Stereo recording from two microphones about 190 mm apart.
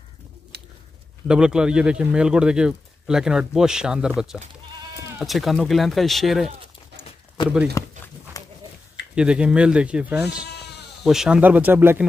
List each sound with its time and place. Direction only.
0.5 s a sound: 60° right (ahead or behind)
1.2 s speech: 5° right (ahead or behind)
7.8 s speech: 15° left (ahead or behind)
8.3 s goat: 20° left (ahead or behind)
9.1 s speech: 5° right (ahead or behind)